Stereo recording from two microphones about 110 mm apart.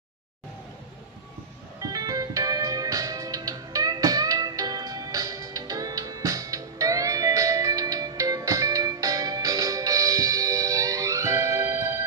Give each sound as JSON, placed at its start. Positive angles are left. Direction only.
{"t": 1.8, "sound": "music", "side_deg": -35}